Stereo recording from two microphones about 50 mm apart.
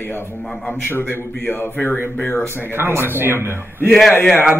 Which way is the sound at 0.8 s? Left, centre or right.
Left.